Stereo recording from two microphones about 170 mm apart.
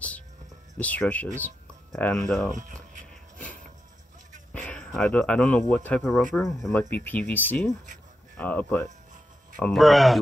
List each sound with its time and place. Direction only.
0.7 s speech: 10° left (ahead or behind)
2.5 s a sound: 50° right (ahead or behind)
4.5 s speech: 5° left (ahead or behind)
6.3 s speech: 15° left (ahead or behind)